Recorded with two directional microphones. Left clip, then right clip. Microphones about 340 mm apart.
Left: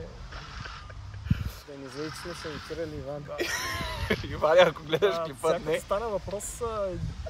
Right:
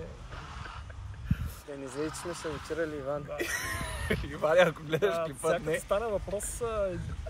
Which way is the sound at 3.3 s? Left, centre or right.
Centre.